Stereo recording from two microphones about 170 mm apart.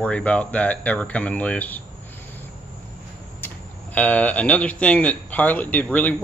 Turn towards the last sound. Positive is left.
turn(degrees=10)  # may be behind; listen again after turning